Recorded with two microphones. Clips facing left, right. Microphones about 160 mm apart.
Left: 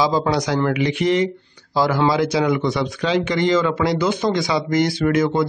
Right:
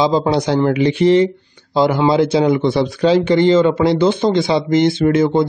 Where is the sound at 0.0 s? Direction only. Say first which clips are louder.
Right 4 dB; 25° right (ahead or behind).